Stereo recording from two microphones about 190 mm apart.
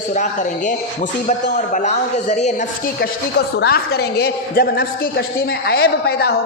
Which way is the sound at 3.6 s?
55° left (ahead or behind).